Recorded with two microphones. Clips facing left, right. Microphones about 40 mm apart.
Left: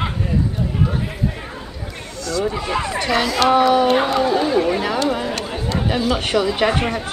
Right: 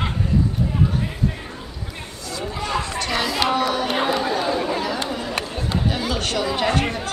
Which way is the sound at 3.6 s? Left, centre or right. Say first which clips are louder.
Left 7 dB; centre.